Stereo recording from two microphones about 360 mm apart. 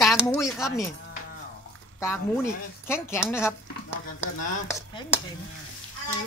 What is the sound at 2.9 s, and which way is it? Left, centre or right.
Speech, centre.